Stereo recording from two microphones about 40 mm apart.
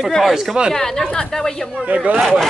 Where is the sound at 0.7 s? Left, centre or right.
Centre.